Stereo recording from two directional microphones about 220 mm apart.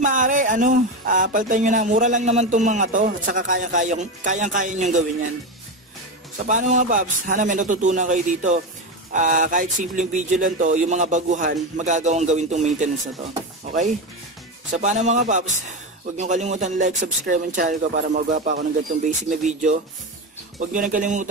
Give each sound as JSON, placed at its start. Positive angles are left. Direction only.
{"t": 0.0, "sound": "music", "side_deg": -35}
{"t": 6.4, "sound": "music", "side_deg": -35}
{"t": 14.7, "sound": "music", "side_deg": -35}